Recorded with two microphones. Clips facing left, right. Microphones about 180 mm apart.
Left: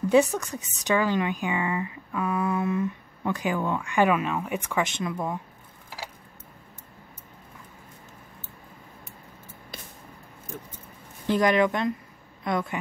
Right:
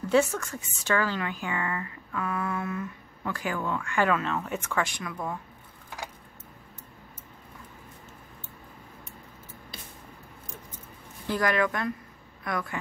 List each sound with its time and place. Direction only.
0.1 s speech: 15° left (ahead or behind)
11.2 s speech: 20° left (ahead or behind)